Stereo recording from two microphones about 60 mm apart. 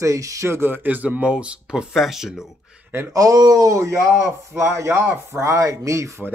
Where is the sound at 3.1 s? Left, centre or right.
Right.